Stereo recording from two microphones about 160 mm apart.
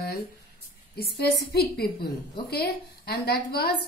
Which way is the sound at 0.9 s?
80° left.